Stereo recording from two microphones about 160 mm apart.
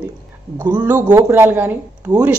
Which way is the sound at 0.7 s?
10° right (ahead or behind).